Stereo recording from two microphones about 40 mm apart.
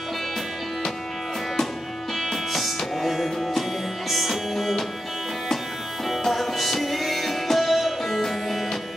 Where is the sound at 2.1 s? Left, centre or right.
Centre.